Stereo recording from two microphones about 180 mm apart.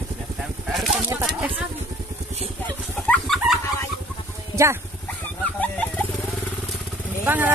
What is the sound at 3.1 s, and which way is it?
Dog, centre (ahead or behind).